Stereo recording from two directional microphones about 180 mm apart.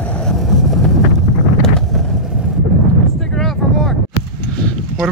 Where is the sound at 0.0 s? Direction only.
5° left (ahead or behind).